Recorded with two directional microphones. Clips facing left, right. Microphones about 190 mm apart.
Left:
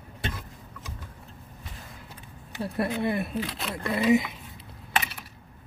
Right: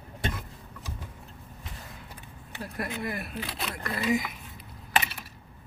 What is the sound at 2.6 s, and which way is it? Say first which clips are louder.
Speech: left 6 dB; 30° left (ahead or behind).